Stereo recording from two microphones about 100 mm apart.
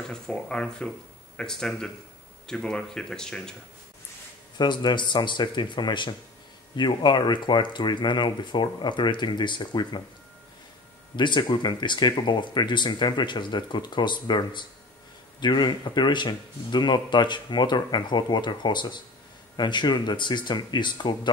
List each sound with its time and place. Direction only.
0.1 s speech: 10° left (ahead or behind)
4.6 s speech: 50° left (ahead or behind)
11.1 s speech: 50° left (ahead or behind)